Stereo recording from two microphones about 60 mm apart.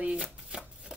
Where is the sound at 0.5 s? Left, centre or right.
Centre.